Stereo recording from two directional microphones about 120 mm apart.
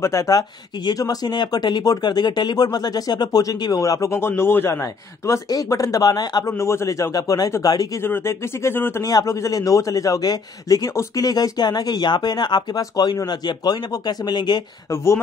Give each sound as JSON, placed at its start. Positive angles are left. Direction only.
{"t": 0.0, "sound": "a man's voice", "side_deg": 30}
{"t": 8.0, "sound": "a man's voice", "side_deg": 20}